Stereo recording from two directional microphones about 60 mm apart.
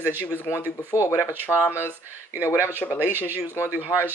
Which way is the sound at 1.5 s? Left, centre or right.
Left.